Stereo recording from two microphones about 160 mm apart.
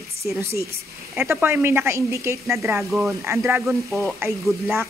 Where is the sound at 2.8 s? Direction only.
5° right (ahead or behind).